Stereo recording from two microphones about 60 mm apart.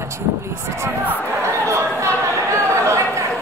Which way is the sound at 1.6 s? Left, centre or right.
Right.